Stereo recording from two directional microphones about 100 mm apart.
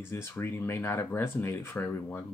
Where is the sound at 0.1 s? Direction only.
30° left (ahead or behind).